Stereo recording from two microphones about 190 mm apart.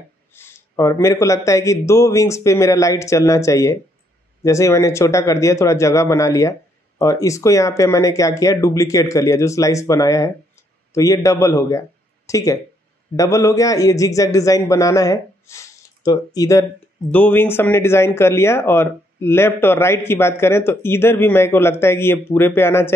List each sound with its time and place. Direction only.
0.3 s speech: 15° left (ahead or behind)